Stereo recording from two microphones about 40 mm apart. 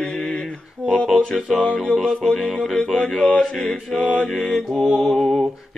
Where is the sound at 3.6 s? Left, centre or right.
Left.